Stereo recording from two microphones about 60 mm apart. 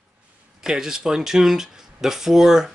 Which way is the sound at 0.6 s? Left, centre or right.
Centre.